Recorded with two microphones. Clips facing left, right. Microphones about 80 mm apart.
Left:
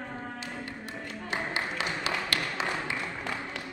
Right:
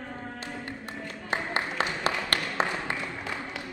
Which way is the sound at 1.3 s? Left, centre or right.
Right.